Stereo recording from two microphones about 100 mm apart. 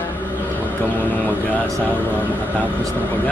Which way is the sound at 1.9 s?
20° left (ahead or behind).